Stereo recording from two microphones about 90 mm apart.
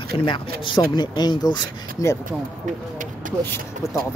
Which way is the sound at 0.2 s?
70° left (ahead or behind).